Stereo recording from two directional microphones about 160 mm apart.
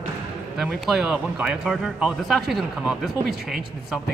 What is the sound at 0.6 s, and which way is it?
Speech, centre (ahead or behind).